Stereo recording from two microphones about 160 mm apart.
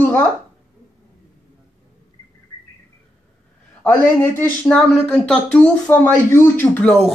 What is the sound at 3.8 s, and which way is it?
A man's voice, 15° left (ahead or behind).